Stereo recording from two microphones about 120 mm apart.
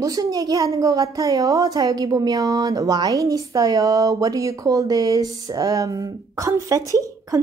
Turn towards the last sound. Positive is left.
turn(degrees=-30)  # may be behind; listen again after turning